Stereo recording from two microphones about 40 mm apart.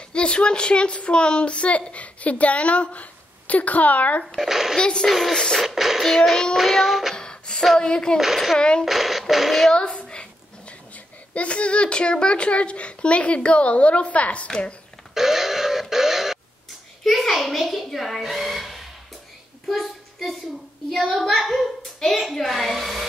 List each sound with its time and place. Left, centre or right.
0.1 s speech: left
4.4 s a child's voice: centre
4.7 s a child's voice: left
5.0 s a child's voice: centre
7.2 s music: centre
7.8 s a child's voice: centre
8.8 s a child's voice: centre
9.7 s a sound: left
11.3 s a child's voice: left
15.1 s alarm clock: centre
17.0 s a child's voice: centre
19.7 s child singing: centre
21.2 s a child's voice: centre